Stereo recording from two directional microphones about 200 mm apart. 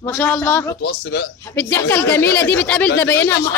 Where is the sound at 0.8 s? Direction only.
55° left (ahead or behind).